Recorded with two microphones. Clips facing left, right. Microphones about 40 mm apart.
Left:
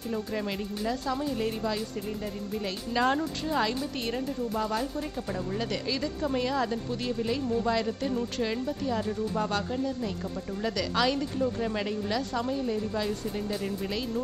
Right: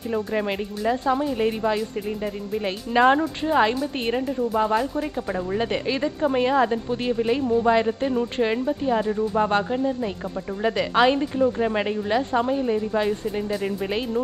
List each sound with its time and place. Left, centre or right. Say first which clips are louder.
0.1 s speech: right 7 dB; right